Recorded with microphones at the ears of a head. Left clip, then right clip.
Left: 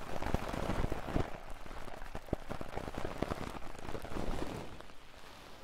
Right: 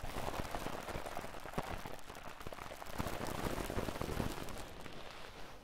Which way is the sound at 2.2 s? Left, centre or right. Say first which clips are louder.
Left 6 dB; left.